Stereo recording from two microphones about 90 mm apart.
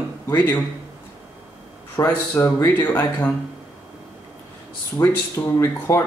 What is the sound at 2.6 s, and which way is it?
Speech, 20° left (ahead or behind).